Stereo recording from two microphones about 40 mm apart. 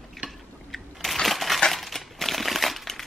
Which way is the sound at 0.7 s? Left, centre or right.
Centre.